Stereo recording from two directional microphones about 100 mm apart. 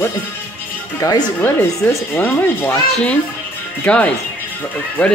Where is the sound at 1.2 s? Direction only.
20° left (ahead or behind).